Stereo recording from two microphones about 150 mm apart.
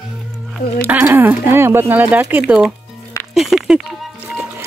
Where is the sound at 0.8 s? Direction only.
15° right (ahead or behind).